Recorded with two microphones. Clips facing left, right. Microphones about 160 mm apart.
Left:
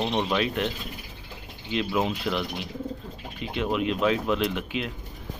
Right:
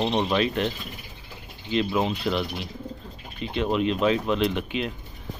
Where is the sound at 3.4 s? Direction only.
10° left (ahead or behind).